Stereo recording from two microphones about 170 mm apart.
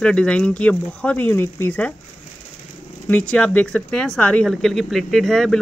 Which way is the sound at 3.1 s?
10° left (ahead or behind).